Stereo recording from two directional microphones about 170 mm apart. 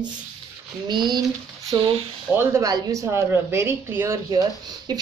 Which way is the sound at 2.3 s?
20° right (ahead or behind).